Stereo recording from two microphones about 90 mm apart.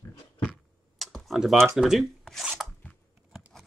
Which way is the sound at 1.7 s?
Centre (ahead or behind).